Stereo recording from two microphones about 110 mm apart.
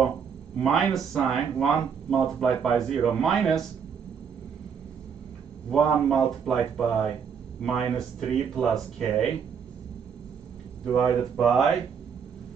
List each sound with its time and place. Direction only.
0.6 s speech: 5° left (ahead or behind)
5.7 s speech: 5° left (ahead or behind)
11.3 s speech: centre (ahead or behind)